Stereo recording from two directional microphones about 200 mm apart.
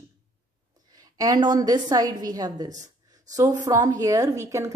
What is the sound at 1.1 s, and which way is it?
A woman's voice, 20° right (ahead or behind).